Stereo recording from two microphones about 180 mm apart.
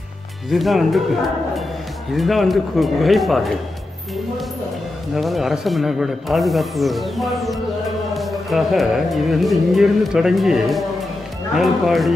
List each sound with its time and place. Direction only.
0.5 s music: centre (ahead or behind)
2.1 s music: centre (ahead or behind)
5.1 s music: centre (ahead or behind)